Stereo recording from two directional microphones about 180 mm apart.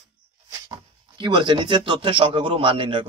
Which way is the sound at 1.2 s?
25° right (ahead or behind).